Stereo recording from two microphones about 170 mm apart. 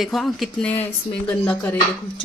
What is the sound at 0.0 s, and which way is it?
A woman's voice, centre (ahead or behind).